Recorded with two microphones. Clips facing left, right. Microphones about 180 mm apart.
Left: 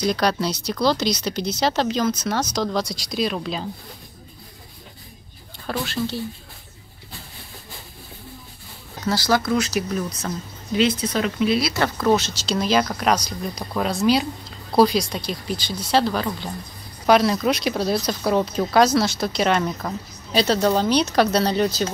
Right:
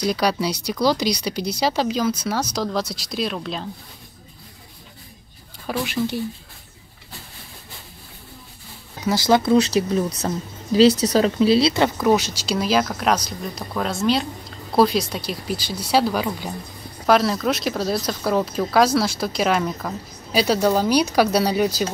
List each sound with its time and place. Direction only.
0.0 s speech: 5° right (ahead or behind)
5.7 s speech: 15° right (ahead or behind)
9.0 s speech: 20° right (ahead or behind)
12.0 s speech: 10° right (ahead or behind)